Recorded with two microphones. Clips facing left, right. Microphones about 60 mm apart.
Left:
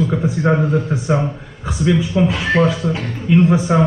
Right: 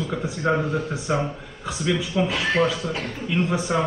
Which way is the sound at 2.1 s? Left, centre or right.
Left.